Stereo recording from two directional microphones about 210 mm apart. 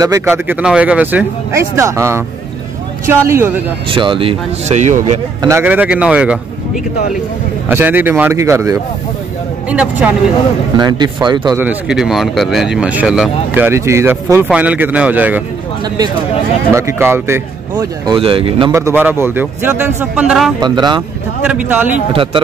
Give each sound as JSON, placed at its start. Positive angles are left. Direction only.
{"t": 0.0, "sound": "speech", "side_deg": -15}
{"t": 3.9, "sound": "speech", "side_deg": -25}
{"t": 5.4, "sound": "speech", "side_deg": -10}
{"t": 10.8, "sound": "speech", "side_deg": -20}
{"t": 11.5, "sound": "speech", "side_deg": -5}
{"t": 16.7, "sound": "speech", "side_deg": -10}
{"t": 18.7, "sound": "speech", "side_deg": -15}
{"t": 20.6, "sound": "speech", "side_deg": -20}
{"t": 21.5, "sound": "speech", "side_deg": -10}
{"t": 22.1, "sound": "speech", "side_deg": -25}